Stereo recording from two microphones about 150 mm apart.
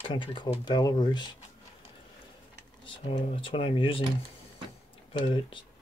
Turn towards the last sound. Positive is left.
turn(degrees=35)  # may be behind; listen again after turning